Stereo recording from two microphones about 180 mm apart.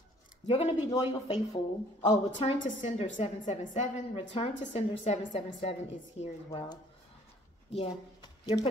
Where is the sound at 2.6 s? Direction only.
40° left (ahead or behind).